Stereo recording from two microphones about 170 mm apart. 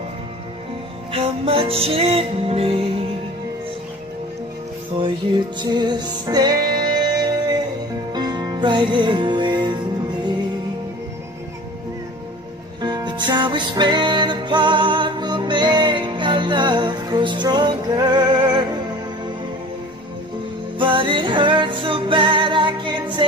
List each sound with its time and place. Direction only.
1.1 s music: 35° right (ahead or behind)
5.6 s music: 25° right (ahead or behind)
12.8 s music: 25° right (ahead or behind)
20.8 s music: 30° right (ahead or behind)